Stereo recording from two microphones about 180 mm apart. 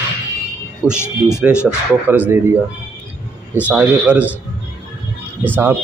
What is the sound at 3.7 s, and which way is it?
Speech, 10° right (ahead or behind).